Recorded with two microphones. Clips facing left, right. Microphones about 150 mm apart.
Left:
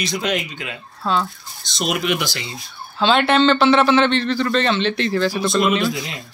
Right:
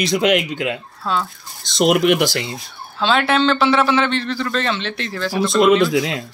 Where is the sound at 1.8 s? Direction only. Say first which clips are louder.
Right 7 dB; 65° right (ahead or behind).